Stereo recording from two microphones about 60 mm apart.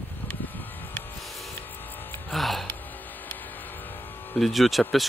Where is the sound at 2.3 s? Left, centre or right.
Centre.